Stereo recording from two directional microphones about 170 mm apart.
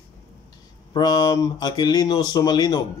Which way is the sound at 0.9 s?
25° left (ahead or behind).